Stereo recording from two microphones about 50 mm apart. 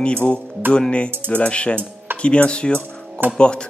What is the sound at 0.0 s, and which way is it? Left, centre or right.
Speech, left.